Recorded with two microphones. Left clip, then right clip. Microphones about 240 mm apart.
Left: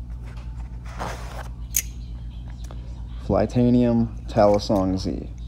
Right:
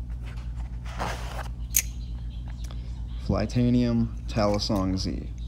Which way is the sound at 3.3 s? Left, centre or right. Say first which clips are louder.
Left 8 dB; right.